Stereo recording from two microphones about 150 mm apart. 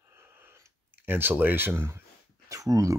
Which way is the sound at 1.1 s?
15° right (ahead or behind).